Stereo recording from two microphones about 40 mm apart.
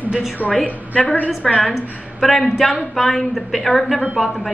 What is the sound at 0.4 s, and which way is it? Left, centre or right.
Speech, right.